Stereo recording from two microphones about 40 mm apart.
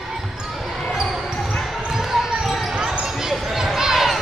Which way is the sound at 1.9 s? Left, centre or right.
Centre.